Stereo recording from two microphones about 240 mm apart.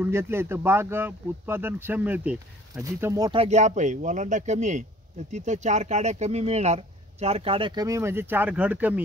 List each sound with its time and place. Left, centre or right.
0.0 s speech: centre